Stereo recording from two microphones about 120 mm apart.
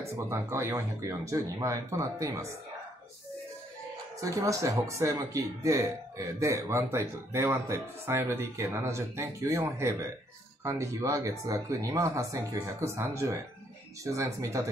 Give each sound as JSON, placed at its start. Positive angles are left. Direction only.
{"t": 0.0, "sound": "speech", "side_deg": -20}
{"t": 4.2, "sound": "speech", "side_deg": -25}